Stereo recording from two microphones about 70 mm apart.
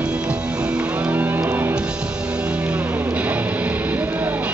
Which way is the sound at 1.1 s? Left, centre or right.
Right.